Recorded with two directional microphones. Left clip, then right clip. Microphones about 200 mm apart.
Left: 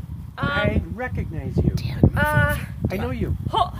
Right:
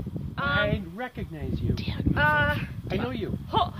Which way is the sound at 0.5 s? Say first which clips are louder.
Left 4 dB; 15° left (ahead or behind).